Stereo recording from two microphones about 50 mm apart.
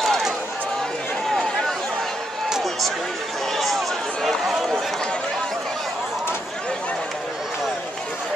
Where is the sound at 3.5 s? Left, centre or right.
Centre.